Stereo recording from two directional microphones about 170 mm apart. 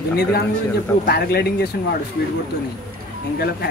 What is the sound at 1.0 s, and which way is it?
Speech, 70° left (ahead or behind).